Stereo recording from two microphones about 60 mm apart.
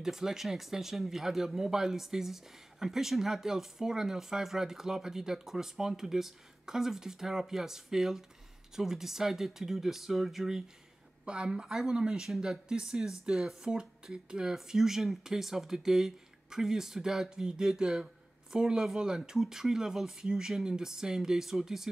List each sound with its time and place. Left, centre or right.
0.0 s speech: centre